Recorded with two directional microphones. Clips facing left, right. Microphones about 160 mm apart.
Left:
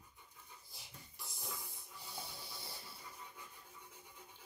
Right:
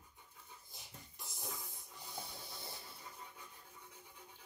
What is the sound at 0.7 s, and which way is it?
Dog, 20° right (ahead or behind).